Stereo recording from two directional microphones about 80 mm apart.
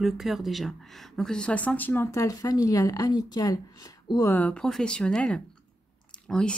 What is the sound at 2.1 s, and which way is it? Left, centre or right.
Speech, left.